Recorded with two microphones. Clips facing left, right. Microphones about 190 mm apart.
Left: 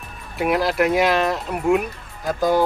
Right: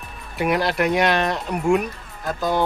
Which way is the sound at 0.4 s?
Centre (ahead or behind).